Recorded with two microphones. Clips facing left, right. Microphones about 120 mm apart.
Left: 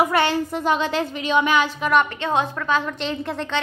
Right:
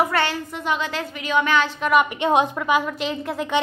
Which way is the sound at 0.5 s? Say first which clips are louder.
Left 4 dB; 35° left (ahead or behind).